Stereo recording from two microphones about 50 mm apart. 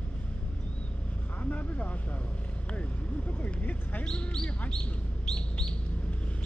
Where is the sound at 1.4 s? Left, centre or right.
Left.